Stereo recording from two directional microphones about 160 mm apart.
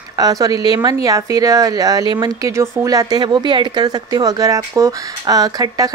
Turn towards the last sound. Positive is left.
turn(degrees=-25)  # may be behind; listen again after turning